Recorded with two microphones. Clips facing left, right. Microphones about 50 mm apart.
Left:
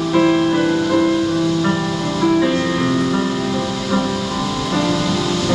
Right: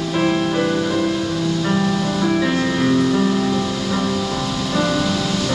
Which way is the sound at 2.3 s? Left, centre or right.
Centre.